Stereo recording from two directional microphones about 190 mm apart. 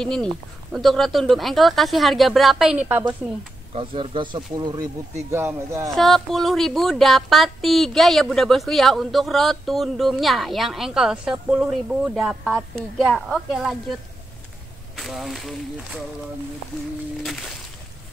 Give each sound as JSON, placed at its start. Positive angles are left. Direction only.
{"t": 0.0, "sound": "speech", "side_deg": 5}
{"t": 3.7, "sound": "speech", "side_deg": -30}
{"t": 5.9, "sound": "speech", "side_deg": 0}
{"t": 15.0, "sound": "speech", "side_deg": 0}
{"t": 17.2, "sound": "speech", "side_deg": 0}